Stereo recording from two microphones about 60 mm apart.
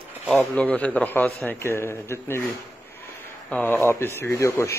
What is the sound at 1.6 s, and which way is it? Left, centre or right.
Speech, left.